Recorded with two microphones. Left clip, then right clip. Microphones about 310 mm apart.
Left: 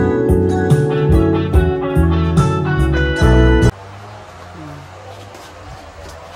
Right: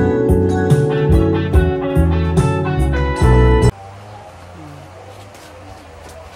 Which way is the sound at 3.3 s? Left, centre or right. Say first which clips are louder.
Even; centre.